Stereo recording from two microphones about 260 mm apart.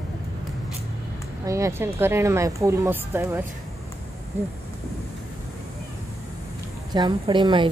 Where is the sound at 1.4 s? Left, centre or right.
Centre.